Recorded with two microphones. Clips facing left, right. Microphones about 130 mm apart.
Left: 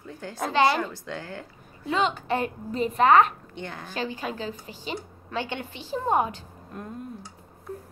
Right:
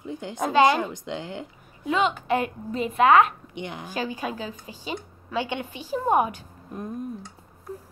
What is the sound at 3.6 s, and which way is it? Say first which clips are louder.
A woman's voice: right 2 dB; 15° right (ahead or behind).